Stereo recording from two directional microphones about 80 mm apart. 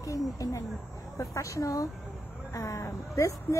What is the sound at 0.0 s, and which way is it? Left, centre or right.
A woman's voice, left.